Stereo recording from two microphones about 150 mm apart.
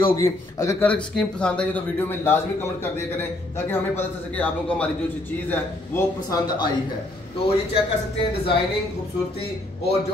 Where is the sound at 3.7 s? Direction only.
10° left (ahead or behind).